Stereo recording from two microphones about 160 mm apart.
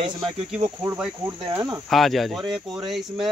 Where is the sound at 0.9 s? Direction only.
15° right (ahead or behind).